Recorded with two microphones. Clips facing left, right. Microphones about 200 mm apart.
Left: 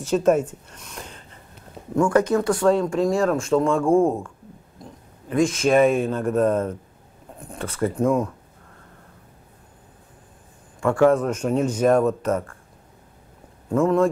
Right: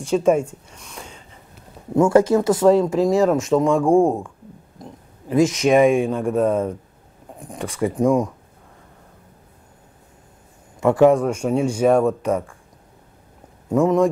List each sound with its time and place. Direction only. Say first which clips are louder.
0.1 s speech: right 1 dB; 10° right (ahead or behind)
0.9 s a sound: even; 5° right (ahead or behind)
2.0 s speech: right 4 dB; 25° right (ahead or behind)
5.3 s speech: right 3 dB; 20° right (ahead or behind)
10.8 s speech: right 3 dB; 20° right (ahead or behind)
13.7 s speech: right 2 dB; 15° right (ahead or behind)